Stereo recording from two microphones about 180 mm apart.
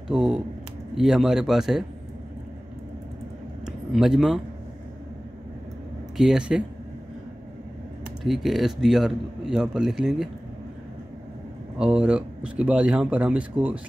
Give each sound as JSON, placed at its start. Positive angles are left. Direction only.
{"t": 0.1, "sound": "a man's voice", "side_deg": -5}
{"t": 3.6, "sound": "a sound", "side_deg": 0}
{"t": 6.1, "sound": "a man's voice", "side_deg": -5}
{"t": 8.2, "sound": "a man's voice", "side_deg": 0}
{"t": 11.8, "sound": "speech", "side_deg": -5}